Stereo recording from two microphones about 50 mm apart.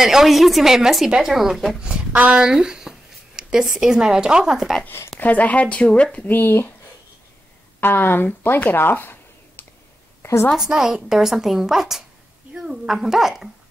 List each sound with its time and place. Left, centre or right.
0.0 s a woman's voice: centre
1.8 s speech: centre
5.2 s speech: left
6.3 s speech: left
7.8 s speech: left
10.2 s a woman's voice: left
10.7 s a woman's voice: centre